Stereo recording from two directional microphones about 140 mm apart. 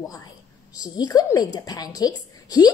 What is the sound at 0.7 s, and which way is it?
Speech, 25° left (ahead or behind).